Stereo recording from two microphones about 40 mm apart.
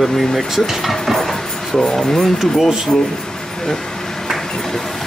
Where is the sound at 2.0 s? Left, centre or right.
Centre.